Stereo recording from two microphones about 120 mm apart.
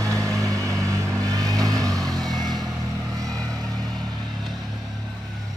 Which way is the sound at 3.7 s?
5° left (ahead or behind).